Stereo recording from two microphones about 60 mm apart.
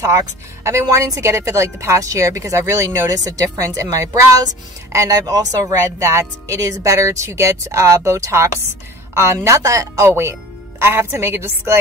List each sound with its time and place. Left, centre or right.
0.7 s speech: right
3.1 s speech: right
10.0 s a woman's voice: right